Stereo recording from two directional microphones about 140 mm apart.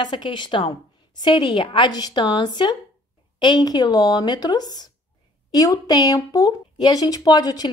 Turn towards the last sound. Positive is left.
turn(degrees=25)  # may be behind; listen again after turning